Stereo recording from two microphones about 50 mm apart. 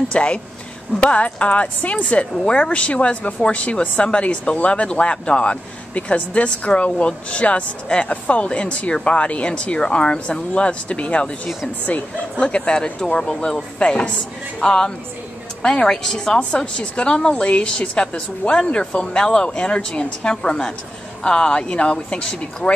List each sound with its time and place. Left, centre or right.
0.1 s speech: left